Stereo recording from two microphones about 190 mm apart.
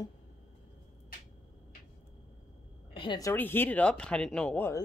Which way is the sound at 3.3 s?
10° left (ahead or behind).